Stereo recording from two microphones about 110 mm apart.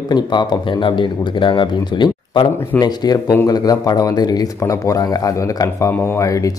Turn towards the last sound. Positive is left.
turn(degrees=30)  # may be behind; listen again after turning